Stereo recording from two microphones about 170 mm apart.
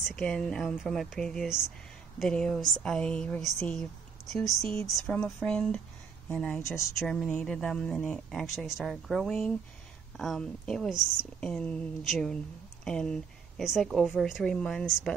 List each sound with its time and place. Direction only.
0.1 s speech: 5° left (ahead or behind)
4.6 s speech: 15° left (ahead or behind)
4.8 s speech: centre (ahead or behind)
6.6 s speech: 15° left (ahead or behind)
7.0 s speech: centre (ahead or behind)